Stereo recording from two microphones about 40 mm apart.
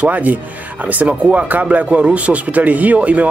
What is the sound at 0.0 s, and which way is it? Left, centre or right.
Speech, right.